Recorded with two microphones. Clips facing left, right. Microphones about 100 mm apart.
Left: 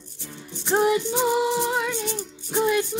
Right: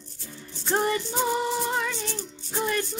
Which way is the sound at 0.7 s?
15° left (ahead or behind).